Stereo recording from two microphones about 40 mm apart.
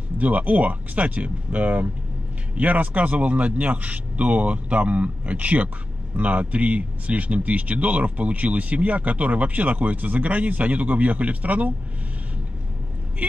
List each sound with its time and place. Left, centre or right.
0.2 s speech: right